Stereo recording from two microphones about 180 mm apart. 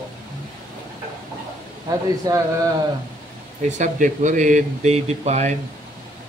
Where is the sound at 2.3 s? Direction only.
20° right (ahead or behind).